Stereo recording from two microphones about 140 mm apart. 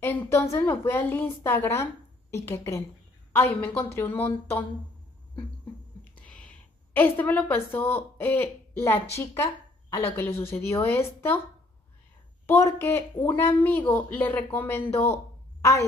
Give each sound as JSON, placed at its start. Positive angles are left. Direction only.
{"t": 0.0, "sound": "a woman's voice", "side_deg": 15}
{"t": 6.1, "sound": "a woman's voice", "side_deg": 10}
{"t": 12.4, "sound": "a woman's voice", "side_deg": 20}